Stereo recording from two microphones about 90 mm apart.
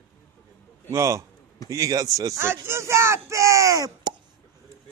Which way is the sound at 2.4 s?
30° right (ahead or behind).